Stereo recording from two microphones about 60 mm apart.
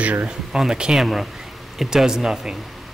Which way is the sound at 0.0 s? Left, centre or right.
Right.